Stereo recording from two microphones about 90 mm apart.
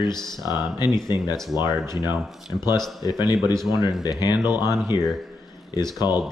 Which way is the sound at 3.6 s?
55° left (ahead or behind).